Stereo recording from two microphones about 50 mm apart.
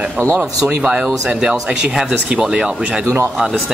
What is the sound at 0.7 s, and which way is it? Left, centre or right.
Speech, centre.